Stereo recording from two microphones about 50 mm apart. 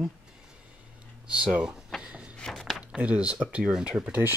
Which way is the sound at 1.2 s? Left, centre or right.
Right.